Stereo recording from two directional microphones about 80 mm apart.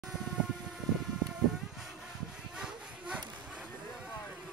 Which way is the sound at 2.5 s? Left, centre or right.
Centre.